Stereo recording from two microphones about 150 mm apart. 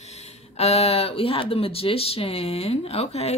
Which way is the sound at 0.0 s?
45° left (ahead or behind).